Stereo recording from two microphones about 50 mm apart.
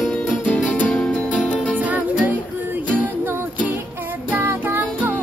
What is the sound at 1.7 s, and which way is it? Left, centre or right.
Music, right.